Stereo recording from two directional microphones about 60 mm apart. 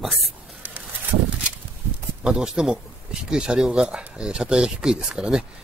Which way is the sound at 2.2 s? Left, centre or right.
Centre.